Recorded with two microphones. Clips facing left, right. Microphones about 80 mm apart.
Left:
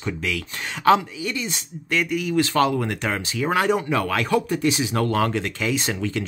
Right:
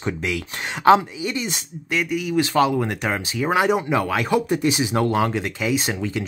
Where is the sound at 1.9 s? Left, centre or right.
Centre.